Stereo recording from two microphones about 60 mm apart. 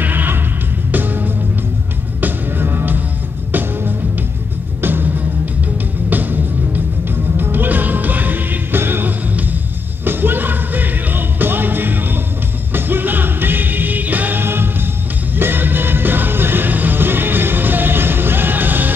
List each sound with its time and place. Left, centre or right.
0.0 s music: right
4.8 s music: right